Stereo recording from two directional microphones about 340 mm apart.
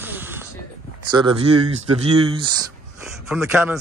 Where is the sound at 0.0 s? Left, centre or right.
Centre.